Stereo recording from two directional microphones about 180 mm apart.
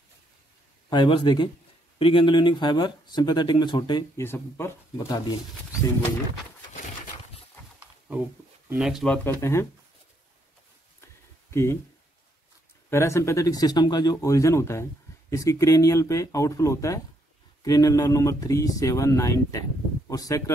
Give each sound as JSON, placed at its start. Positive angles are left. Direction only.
{"t": 0.8, "sound": "speech", "side_deg": 25}
{"t": 4.2, "sound": "speech", "side_deg": 15}
{"t": 8.6, "sound": "speech", "side_deg": -5}
{"t": 11.5, "sound": "speech", "side_deg": 15}
{"t": 12.9, "sound": "speech", "side_deg": 15}